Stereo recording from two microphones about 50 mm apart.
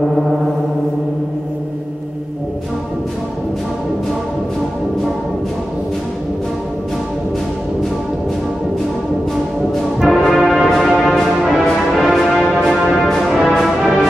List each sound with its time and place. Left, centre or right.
9.9 s brass instrument: centre
12.6 s music: centre
13.0 s brass instrument: centre